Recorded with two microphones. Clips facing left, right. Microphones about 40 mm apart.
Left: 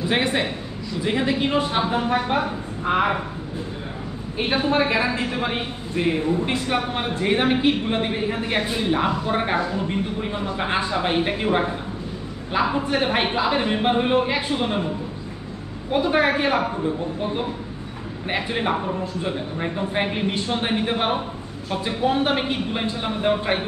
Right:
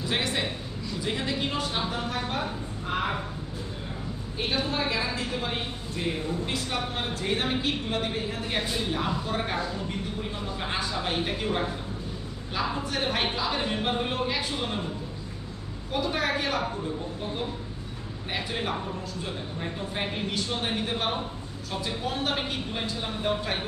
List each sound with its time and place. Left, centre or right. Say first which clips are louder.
0.0 s a man's voice: left 7 dB; left
4.4 s a man's voice: left 8 dB; left
15.9 s speech: left 8 dB; left